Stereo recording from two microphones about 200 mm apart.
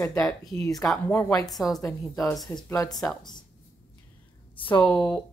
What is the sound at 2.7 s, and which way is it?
Speech, 15° left (ahead or behind).